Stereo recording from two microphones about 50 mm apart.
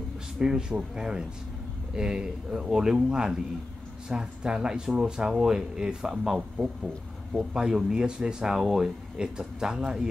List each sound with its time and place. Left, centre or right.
0.4 s speech: centre
7.5 s speech: centre